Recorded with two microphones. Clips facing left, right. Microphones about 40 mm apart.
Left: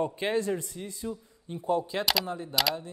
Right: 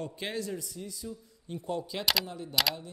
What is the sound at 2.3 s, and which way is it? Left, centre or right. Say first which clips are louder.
Speech: left 5 dB; left.